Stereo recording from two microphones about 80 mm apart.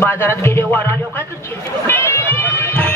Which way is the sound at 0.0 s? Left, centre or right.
Left.